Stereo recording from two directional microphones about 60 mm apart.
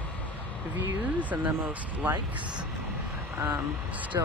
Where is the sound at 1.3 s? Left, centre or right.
Right.